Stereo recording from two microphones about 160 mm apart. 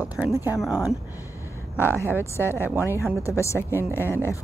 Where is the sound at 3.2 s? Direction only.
20° left (ahead or behind).